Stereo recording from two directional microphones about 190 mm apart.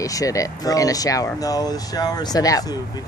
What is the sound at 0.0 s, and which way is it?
Speech, 20° left (ahead or behind).